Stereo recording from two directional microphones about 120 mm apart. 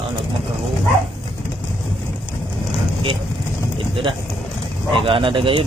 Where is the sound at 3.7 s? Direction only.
45° right (ahead or behind).